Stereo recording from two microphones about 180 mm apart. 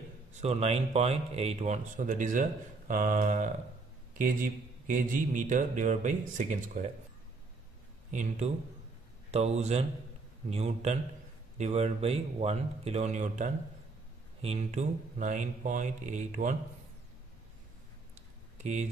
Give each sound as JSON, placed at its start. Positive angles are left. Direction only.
{"t": 0.4, "sound": "speech", "side_deg": -35}
{"t": 8.1, "sound": "speech", "side_deg": -45}
{"t": 18.6, "sound": "speech", "side_deg": -40}